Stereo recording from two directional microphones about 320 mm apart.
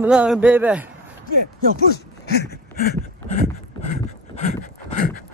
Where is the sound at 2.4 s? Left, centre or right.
Left.